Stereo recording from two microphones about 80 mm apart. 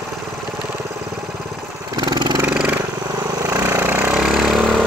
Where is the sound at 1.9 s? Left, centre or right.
Right.